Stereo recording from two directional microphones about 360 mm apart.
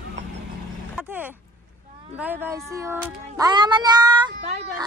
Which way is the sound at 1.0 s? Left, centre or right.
Centre.